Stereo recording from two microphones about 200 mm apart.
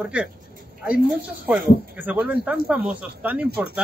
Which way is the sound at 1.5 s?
10° right (ahead or behind).